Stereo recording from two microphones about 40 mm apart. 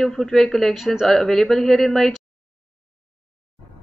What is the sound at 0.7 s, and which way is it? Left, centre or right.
Speech, centre.